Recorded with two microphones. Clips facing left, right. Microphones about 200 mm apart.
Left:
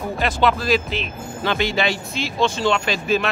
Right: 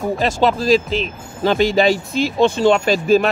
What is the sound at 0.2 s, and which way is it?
Speech, 35° right (ahead or behind).